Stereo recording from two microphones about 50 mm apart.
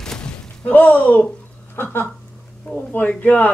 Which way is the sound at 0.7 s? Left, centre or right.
Left.